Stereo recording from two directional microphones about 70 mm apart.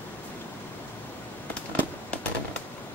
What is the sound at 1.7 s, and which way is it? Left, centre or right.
Fireworks, left.